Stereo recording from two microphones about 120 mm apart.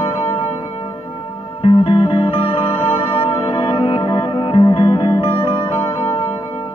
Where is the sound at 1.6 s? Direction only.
50° left (ahead or behind).